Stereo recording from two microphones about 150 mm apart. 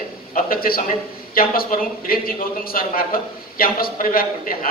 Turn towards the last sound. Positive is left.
turn(degrees=70)  # may be behind; listen again after turning